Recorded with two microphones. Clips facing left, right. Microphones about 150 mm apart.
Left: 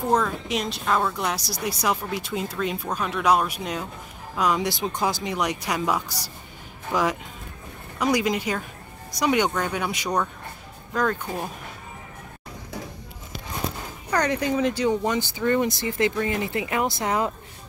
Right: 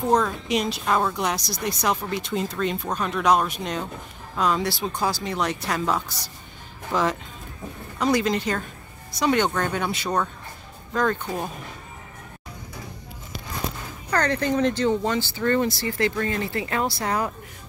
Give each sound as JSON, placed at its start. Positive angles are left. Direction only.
{"t": 0.1, "sound": "speech", "side_deg": 0}
{"t": 10.9, "sound": "speech", "side_deg": 0}
{"t": 14.1, "sound": "speech", "side_deg": 15}